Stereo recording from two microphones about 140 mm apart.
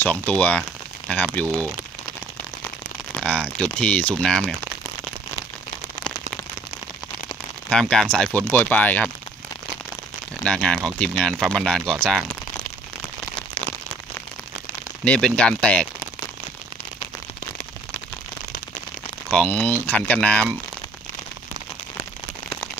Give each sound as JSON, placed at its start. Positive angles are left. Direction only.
{"t": 0.0, "sound": "speech", "side_deg": 10}
{"t": 3.2, "sound": "speech", "side_deg": 10}
{"t": 7.9, "sound": "speech", "side_deg": 5}
{"t": 10.4, "sound": "speech", "side_deg": 5}
{"t": 13.6, "sound": "a sound", "side_deg": 50}
{"t": 15.0, "sound": "speech", "side_deg": 5}
{"t": 19.3, "sound": "speech", "side_deg": 10}